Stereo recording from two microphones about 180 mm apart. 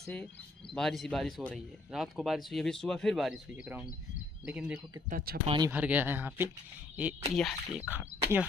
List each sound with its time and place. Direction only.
0.7 s speech: centre (ahead or behind)
5.1 s speech: 60° right (ahead or behind)
5.7 s speech: 10° right (ahead or behind)